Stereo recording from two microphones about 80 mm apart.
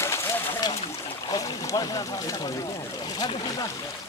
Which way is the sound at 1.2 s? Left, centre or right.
Left.